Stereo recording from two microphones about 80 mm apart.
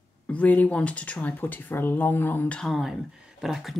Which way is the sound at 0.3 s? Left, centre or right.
Centre.